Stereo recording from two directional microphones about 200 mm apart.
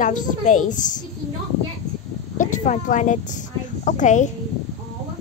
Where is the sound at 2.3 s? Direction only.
40° left (ahead or behind).